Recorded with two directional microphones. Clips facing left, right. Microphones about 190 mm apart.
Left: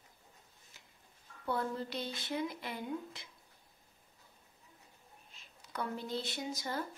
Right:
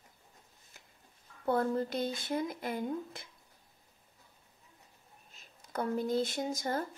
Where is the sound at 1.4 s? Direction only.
50° right (ahead or behind).